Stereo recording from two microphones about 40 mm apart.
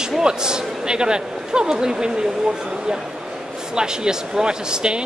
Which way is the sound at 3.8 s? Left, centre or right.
Centre.